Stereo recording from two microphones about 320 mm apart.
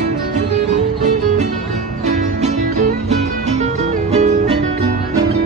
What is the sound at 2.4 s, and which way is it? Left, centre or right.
Music, right.